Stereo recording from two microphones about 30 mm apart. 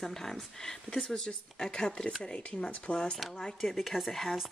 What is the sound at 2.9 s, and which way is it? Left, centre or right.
Speech, left.